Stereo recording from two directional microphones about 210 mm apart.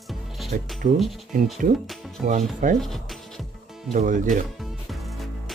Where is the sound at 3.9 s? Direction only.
35° right (ahead or behind).